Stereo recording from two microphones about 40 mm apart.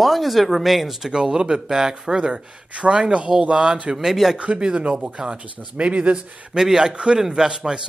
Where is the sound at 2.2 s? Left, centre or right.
Right.